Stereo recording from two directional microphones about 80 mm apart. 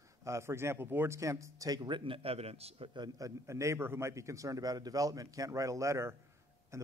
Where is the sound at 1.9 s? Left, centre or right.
Right.